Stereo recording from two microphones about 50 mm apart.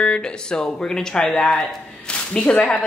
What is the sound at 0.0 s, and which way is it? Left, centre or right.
A woman's voice, centre.